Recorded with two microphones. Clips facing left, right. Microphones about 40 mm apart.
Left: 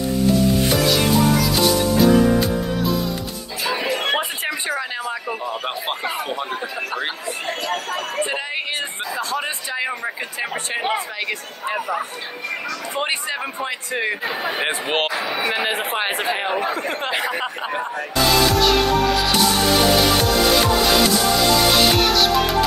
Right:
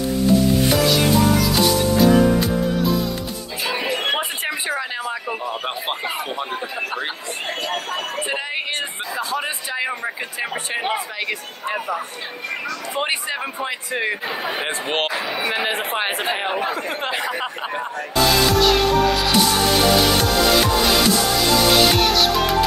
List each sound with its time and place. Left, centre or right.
0.7 s music: centre
3.6 s music: right
4.5 s a sound: centre
5.4 s speech: centre
7.4 s speech: centre
9.3 s speech: centre
13.0 s speech: centre
14.6 s speech: centre
16.4 s speech: centre
17.2 s speech: centre
18.3 s music: centre